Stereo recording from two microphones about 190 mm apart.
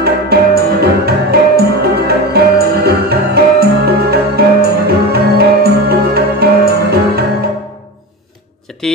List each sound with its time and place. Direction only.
0.0 s music: 55° right (ahead or behind)